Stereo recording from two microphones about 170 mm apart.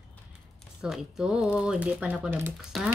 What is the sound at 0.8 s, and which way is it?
Speech, centre (ahead or behind).